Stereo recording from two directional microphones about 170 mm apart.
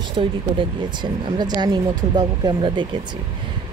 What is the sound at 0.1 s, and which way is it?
Speech, 30° right (ahead or behind).